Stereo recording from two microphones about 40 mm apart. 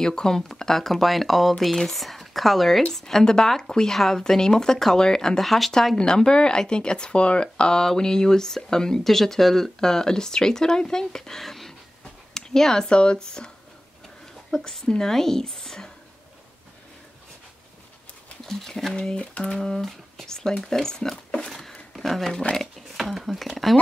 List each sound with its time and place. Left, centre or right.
0.0 s speech: centre
5.4 s speech: centre
5.9 s speech: centre
7.8 s speech: centre
14.5 s speech: centre
18.4 s speech: centre
18.9 s speech: left
21.5 s a sound: centre
21.9 s speech: centre